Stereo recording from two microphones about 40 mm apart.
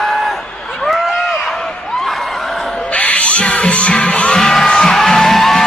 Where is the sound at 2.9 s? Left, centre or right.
Left.